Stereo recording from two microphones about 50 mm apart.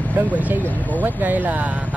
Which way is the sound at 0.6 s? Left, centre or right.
Left.